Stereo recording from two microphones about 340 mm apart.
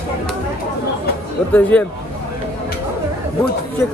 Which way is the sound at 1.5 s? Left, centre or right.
Centre.